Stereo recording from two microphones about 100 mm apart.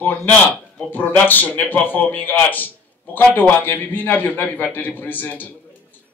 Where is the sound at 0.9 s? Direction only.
15° left (ahead or behind).